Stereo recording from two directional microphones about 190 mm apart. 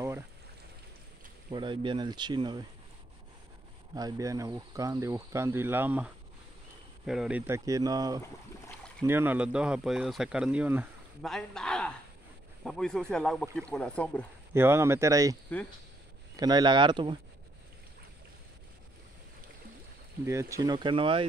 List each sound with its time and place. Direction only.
1.5 s speech: 25° right (ahead or behind)
3.9 s speech: 20° right (ahead or behind)
8.2 s boat: 15° left (ahead or behind)
9.0 s speech: 10° right (ahead or behind); by 14.2 s 5° left (ahead or behind)
14.5 s speech: 15° right (ahead or behind)
16.3 s speech: 20° right (ahead or behind)
20.2 s speech: 15° right (ahead or behind)